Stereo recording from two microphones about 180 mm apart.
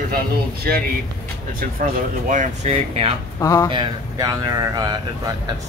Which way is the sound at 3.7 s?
25° right (ahead or behind).